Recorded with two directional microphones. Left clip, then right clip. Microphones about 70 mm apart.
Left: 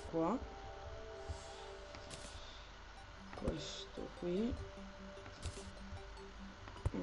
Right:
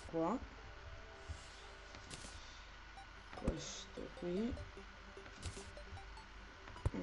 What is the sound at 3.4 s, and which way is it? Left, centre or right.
Music, centre.